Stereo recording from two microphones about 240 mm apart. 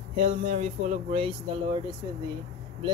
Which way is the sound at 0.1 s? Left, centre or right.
Right.